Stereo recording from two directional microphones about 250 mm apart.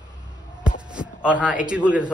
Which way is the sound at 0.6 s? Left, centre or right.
Centre.